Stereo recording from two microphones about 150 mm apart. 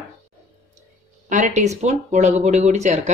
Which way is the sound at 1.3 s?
55° right (ahead or behind).